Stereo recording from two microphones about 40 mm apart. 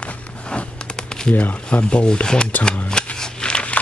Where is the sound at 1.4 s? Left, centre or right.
Left.